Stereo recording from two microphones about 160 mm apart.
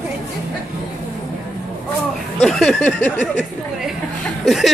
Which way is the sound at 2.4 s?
5° left (ahead or behind).